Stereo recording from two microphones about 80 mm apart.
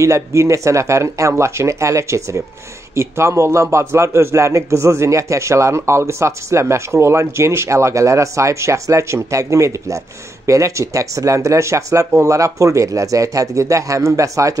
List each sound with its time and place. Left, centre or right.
0.0 s a man's voice: right